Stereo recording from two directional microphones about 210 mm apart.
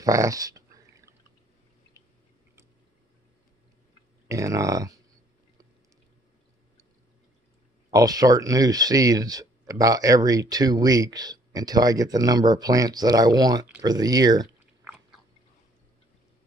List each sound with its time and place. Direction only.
0.0 s a sound: 15° right (ahead or behind)
4.3 s speech: 15° right (ahead or behind)
7.9 s speech: 15° right (ahead or behind)